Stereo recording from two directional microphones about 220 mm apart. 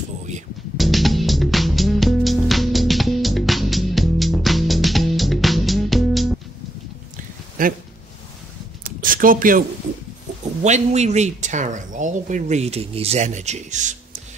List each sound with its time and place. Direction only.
0.7 s music: centre (ahead or behind)
7.6 s speech: 40° right (ahead or behind)
8.8 s a sound: 40° right (ahead or behind)
10.6 s speech: 30° right (ahead or behind)